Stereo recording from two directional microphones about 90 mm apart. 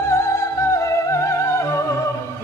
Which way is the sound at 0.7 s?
35° left (ahead or behind).